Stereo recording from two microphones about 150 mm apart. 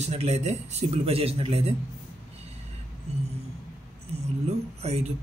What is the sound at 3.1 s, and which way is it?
Speech, 45° right (ahead or behind).